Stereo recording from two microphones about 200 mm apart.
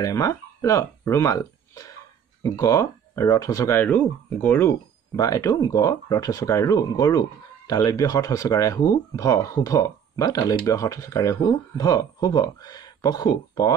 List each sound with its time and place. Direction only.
0.0 s speech: 15° left (ahead or behind)